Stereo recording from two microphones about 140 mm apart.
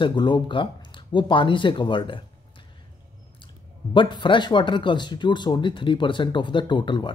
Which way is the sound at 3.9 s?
35° left (ahead or behind).